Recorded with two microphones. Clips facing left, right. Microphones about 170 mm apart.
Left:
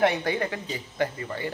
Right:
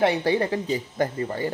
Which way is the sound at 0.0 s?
30° right (ahead or behind).